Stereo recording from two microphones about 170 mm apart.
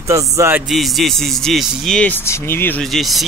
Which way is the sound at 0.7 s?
Centre (ahead or behind).